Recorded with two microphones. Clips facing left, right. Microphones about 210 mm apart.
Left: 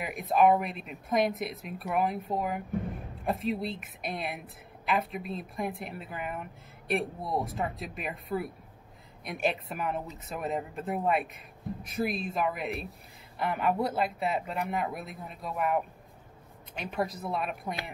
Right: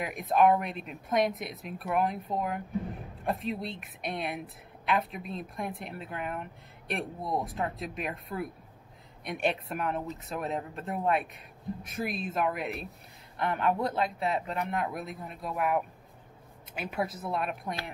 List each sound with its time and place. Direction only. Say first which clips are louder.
0.0 s speech: even; centre (ahead or behind)